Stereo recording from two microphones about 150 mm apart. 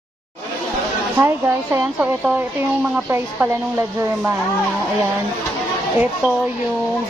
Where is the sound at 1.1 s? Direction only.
15° right (ahead or behind).